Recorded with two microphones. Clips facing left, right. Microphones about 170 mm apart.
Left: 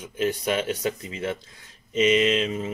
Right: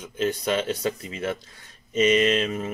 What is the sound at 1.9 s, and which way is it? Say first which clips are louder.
Mantra: even; 45° right (ahead or behind).